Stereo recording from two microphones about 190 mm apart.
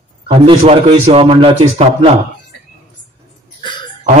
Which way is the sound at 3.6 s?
25° left (ahead or behind).